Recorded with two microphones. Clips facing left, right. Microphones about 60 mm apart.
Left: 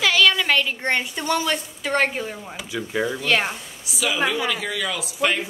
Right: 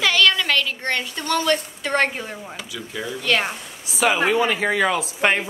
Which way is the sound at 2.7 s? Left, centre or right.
Left.